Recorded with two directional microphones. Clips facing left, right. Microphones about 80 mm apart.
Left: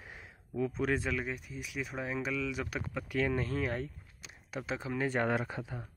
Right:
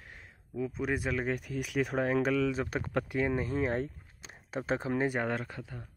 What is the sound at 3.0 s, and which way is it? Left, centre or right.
Speech, centre.